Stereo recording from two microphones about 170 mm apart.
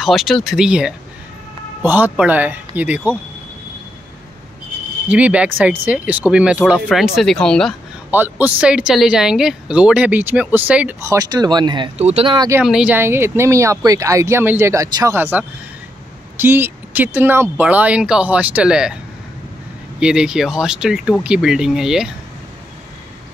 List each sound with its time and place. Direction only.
0.0 s speech: centre (ahead or behind)
5.0 s speech: 10° right (ahead or behind)
8.1 s speech: 10° right (ahead or behind); by 11.9 s 25° right (ahead or behind)
12.0 s speech: 40° right (ahead or behind)
12.3 s speech: 25° right (ahead or behind)
12.6 s speech: 5° right (ahead or behind)
20.0 s speech: 5° right (ahead or behind)